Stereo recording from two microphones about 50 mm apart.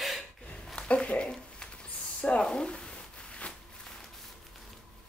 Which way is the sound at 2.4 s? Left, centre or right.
Centre.